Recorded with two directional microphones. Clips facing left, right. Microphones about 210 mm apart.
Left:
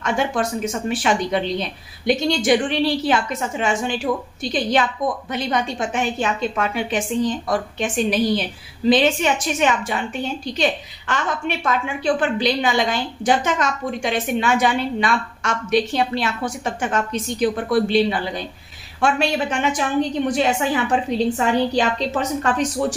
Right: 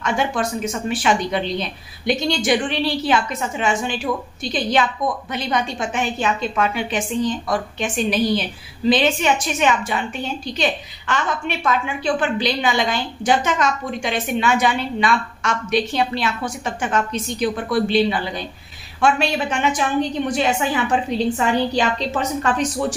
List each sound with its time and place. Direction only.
0.0 s a woman's voice: 45° left (ahead or behind)